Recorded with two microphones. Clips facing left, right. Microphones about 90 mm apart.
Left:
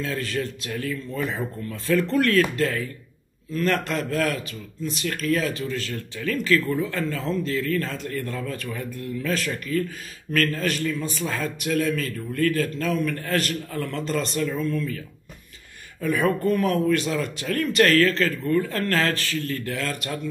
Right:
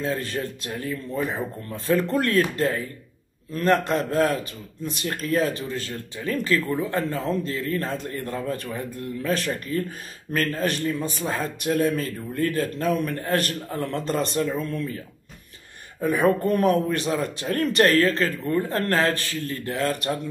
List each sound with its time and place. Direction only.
0.0 s a man's voice: 25° right (ahead or behind)
14.6 s a man's voice: 40° right (ahead or behind)
16.0 s speech: 40° right (ahead or behind)
16.6 s speech: 25° right (ahead or behind)